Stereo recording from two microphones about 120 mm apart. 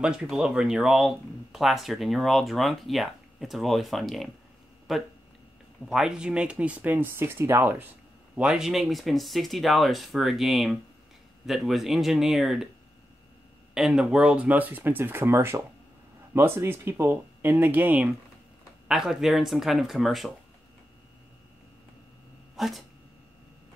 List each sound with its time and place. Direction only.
0.0 s speech: 5° right (ahead or behind)
8.4 s speech: 5° right (ahead or behind)
13.7 s speech: 5° right (ahead or behind)
22.6 s speech: centre (ahead or behind)